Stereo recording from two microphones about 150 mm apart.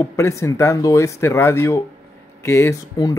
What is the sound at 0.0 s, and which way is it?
Speech, 20° left (ahead or behind).